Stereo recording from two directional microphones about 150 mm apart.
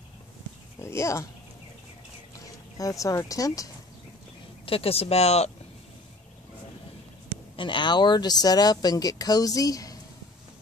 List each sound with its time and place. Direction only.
0.7 s dog: 20° left (ahead or behind)
2.3 s speech: 25° left (ahead or behind)
4.6 s speech: 40° left (ahead or behind)
7.5 s speech: 35° left (ahead or behind)